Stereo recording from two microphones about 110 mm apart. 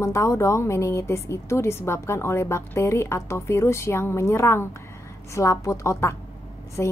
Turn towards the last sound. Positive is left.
turn(degrees=25)  # may be behind; listen again after turning